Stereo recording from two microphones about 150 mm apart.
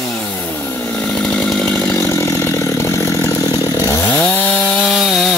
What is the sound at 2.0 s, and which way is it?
Chainsaw, 15° left (ahead or behind).